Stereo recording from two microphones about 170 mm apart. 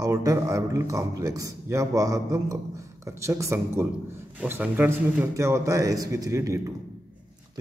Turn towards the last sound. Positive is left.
turn(degrees=-20)  # may be behind; listen again after turning